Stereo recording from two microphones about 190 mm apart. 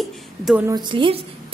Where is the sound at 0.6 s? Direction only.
25° right (ahead or behind).